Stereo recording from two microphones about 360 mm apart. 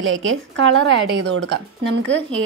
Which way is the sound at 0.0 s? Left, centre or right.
Right.